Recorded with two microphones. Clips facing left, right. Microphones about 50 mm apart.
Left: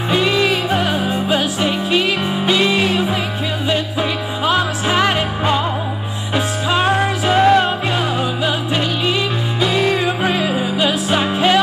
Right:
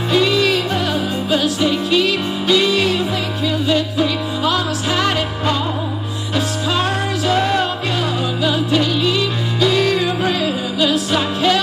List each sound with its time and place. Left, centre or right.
0.1 s music: left